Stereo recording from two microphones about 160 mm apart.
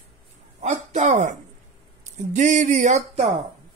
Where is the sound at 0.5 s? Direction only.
45° right (ahead or behind).